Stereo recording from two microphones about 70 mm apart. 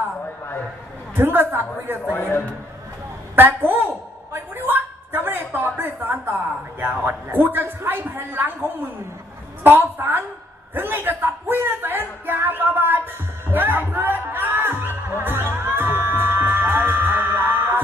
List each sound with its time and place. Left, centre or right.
1.1 s a woman's voice: right
2.0 s a man's voice: left
3.3 s a man's voice: right
4.3 s a sound: right
6.8 s a man's voice: right
9.6 s a man's voice: right
10.7 s a sound: right